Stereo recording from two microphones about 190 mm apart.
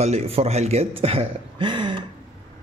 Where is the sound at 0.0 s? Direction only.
35° right (ahead or behind).